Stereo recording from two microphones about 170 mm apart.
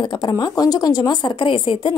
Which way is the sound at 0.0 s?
25° left (ahead or behind).